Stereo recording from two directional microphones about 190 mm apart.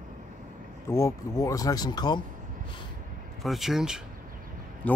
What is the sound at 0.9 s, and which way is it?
Speech, 15° left (ahead or behind).